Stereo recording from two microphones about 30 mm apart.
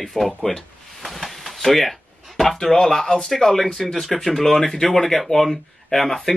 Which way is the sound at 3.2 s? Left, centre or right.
Centre.